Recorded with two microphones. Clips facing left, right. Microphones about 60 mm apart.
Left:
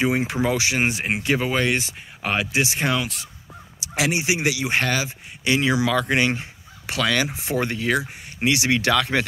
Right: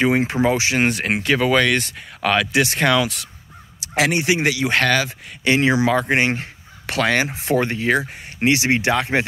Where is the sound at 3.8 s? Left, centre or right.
Right.